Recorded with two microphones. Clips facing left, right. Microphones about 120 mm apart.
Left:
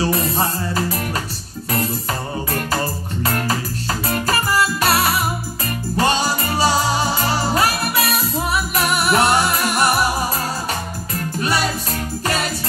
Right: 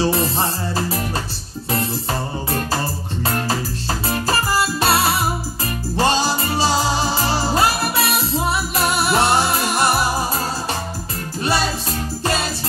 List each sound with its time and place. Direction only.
0.0 s music: 25° right (ahead or behind)
4.3 s music: 30° right (ahead or behind)
7.5 s music: 30° right (ahead or behind)